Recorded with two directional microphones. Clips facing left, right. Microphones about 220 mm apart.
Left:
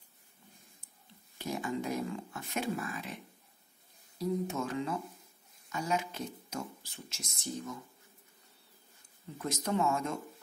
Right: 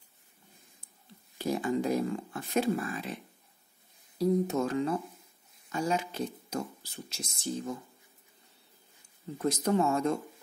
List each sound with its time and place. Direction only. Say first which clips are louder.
1.4 s speech: right 6 dB; 35° right (ahead or behind)
4.2 s speech: right 6 dB; 35° right (ahead or behind)
9.4 s speech: right 5 dB; 35° right (ahead or behind)